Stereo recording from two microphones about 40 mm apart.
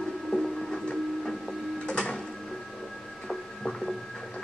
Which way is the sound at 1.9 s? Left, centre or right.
Left.